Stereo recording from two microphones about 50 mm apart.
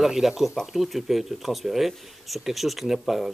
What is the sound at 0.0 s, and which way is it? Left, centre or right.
Speech, centre.